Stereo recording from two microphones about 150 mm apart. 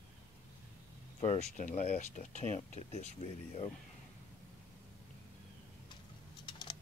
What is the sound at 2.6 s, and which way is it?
Speech, 40° left (ahead or behind).